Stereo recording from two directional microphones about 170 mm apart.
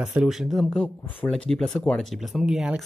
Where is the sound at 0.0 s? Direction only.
5° right (ahead or behind).